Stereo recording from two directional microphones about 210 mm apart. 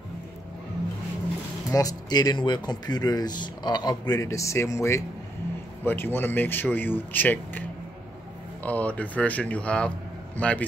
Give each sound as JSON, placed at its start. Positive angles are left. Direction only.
{"t": 1.7, "sound": "speech", "side_deg": 15}
{"t": 8.6, "sound": "a man's voice", "side_deg": 5}